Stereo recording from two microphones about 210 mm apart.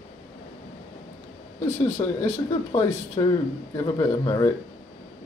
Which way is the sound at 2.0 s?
20° left (ahead or behind).